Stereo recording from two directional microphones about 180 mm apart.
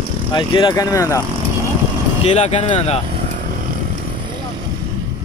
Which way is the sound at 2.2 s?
35° left (ahead or behind).